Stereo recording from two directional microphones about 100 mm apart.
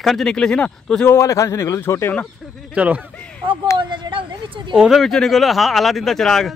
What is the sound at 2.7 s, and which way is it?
Speech, 15° right (ahead or behind).